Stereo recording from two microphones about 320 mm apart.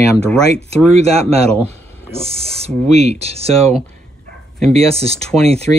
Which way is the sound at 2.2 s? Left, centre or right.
Centre.